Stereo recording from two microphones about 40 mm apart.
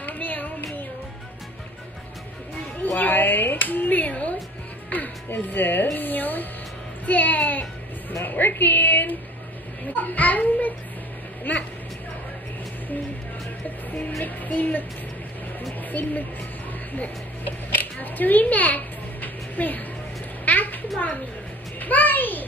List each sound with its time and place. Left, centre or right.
0.0 s music: left
2.8 s speech: left
4.9 s music: left
5.9 s speech: left
8.1 s a sound: left
9.9 s a sound: left
11.5 s vehicle: left
14.2 s music: left
16.0 s music: left
16.9 s a sound: left